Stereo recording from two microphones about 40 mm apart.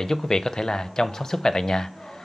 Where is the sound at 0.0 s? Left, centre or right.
Centre.